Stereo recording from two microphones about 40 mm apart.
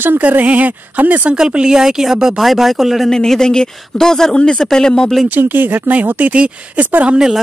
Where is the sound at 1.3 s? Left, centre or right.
Right; by 3.1 s centre.